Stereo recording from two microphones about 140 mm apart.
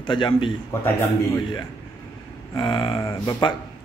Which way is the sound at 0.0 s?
35° left (ahead or behind).